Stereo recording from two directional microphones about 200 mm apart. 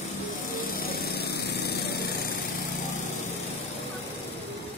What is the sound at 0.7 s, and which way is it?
Lawn mower, 50° left (ahead or behind).